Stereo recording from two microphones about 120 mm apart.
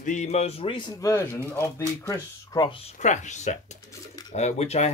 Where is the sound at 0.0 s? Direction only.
85° left; by 0.9 s 45° left (ahead or behind).